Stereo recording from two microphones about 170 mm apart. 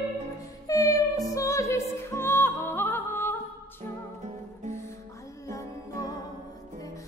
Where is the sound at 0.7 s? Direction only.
20° left (ahead or behind).